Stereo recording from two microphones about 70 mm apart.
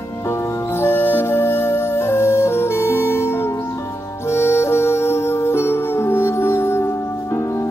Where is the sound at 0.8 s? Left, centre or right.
Left.